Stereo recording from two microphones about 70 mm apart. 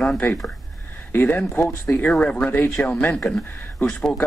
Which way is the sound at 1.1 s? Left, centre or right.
Left.